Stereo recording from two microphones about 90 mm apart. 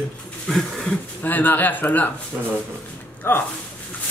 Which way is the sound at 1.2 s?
20° left (ahead or behind).